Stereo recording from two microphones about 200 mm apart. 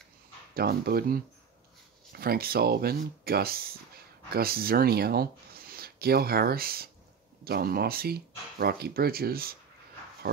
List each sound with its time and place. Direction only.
0.6 s speech: 50° right (ahead or behind)